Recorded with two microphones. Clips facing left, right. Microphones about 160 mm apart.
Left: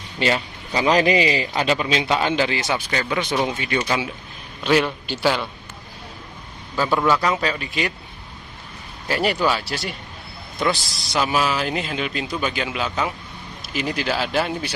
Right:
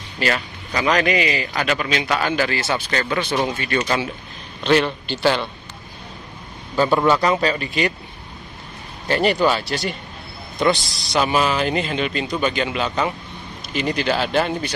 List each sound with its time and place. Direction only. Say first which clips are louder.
0.2 s a man's voice: left 1 dB; 25° left (ahead or behind); by 5.5 s 10° left (ahead or behind)
7.1 s speech: right 3 dB; centre (ahead or behind)
9.0 s speech: right 3 dB; 5° left (ahead or behind)